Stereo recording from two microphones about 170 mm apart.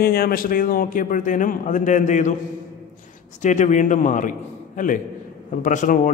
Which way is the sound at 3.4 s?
45° left (ahead or behind).